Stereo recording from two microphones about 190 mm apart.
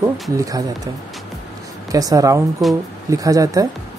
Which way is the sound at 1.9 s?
20° right (ahead or behind).